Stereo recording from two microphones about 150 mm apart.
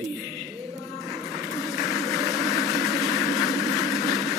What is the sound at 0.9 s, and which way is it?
Vehicle, centre (ahead or behind).